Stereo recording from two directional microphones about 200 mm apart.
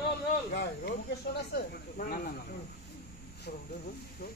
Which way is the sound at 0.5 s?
55° left (ahead or behind).